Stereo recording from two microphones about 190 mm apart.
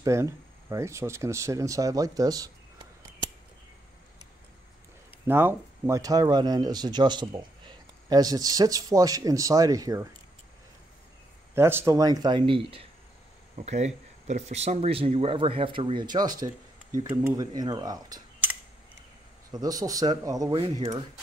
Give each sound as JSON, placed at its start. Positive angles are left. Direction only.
{"t": 0.0, "sound": "speech", "side_deg": -15}
{"t": 5.2, "sound": "speech", "side_deg": -10}
{"t": 11.5, "sound": "speech", "side_deg": -15}
{"t": 19.5, "sound": "speech", "side_deg": -20}